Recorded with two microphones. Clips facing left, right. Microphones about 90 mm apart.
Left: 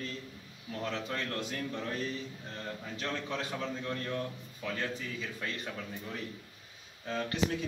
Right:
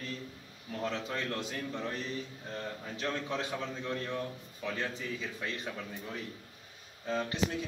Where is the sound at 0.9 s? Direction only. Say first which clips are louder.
Even; 10° right (ahead or behind).